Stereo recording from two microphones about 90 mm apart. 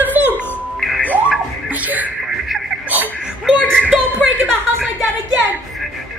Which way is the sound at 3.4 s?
10° left (ahead or behind).